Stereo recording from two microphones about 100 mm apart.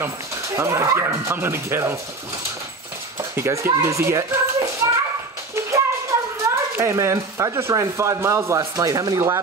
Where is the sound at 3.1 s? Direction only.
25° right (ahead or behind).